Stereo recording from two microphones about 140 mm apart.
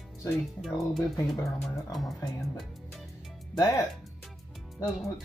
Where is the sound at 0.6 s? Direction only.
Centre (ahead or behind).